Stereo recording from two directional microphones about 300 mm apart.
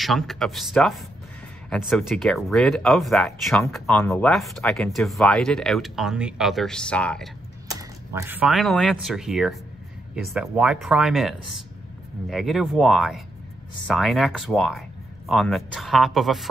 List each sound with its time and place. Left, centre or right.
0.0 s speech: centre
8.1 s speech: centre